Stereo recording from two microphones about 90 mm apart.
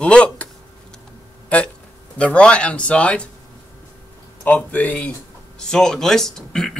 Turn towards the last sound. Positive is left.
turn(degrees=5)  # may be behind; listen again after turning